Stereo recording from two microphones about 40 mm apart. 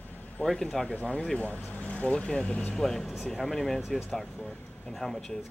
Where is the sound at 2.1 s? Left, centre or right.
Left.